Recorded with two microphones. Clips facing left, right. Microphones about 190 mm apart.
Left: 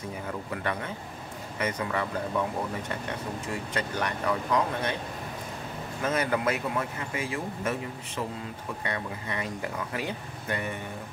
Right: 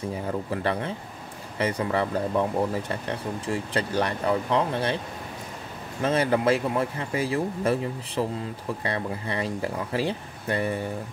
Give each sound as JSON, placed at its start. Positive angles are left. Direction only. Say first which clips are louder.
{"t": 0.5, "sound": "speech", "louder": "right 3 dB", "side_deg": -30}
{"t": 3.7, "sound": "speech", "louder": "right 5 dB", "side_deg": -30}
{"t": 6.0, "sound": "speech", "louder": "right 5 dB", "side_deg": -30}